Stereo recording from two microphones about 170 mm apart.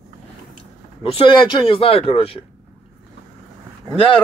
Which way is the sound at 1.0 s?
30° left (ahead or behind).